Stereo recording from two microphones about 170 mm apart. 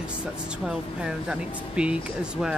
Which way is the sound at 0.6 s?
5° right (ahead or behind).